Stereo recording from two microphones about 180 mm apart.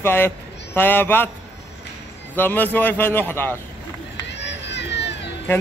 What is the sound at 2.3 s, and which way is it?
Speech, 10° left (ahead or behind).